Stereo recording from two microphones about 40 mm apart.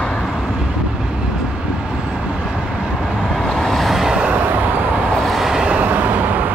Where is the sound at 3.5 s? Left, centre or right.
Centre.